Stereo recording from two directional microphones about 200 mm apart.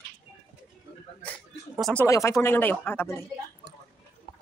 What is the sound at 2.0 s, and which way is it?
Speech, 15° left (ahead or behind).